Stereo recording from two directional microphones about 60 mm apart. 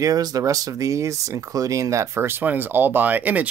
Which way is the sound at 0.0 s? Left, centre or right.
Right.